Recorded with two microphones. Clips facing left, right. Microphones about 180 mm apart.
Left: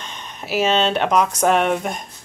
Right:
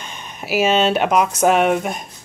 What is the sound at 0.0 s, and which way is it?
Speech, 10° right (ahead or behind).